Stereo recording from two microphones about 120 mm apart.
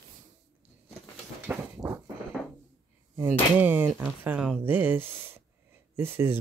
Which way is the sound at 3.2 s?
15° right (ahead or behind).